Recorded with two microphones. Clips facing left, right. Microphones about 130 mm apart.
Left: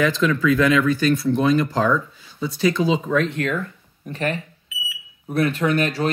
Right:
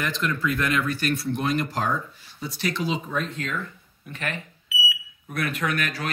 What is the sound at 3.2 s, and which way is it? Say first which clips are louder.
Speech: left 7 dB; 70° left (ahead or behind).